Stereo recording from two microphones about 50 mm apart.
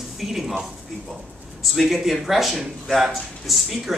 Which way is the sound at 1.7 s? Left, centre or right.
Centre.